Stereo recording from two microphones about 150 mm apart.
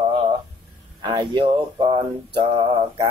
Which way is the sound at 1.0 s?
35° right (ahead or behind).